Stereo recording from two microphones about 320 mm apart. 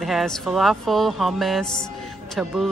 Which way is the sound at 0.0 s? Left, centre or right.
Centre.